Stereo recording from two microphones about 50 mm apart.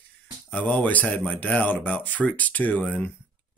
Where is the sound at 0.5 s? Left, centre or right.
Left.